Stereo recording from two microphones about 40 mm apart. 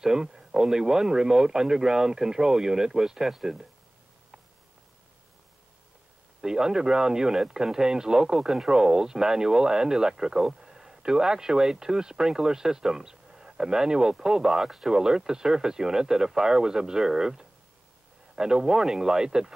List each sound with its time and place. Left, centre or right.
0.0 s speech: centre
6.4 s speech: centre